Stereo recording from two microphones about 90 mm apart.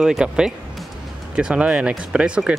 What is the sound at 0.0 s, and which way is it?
Speech, 5° right (ahead or behind).